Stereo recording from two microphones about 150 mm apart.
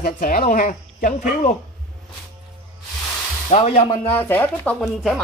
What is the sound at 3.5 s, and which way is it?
Speech, 40° left (ahead or behind).